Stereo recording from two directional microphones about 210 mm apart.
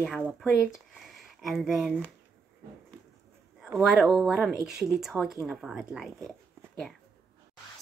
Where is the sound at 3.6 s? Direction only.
Centre (ahead or behind).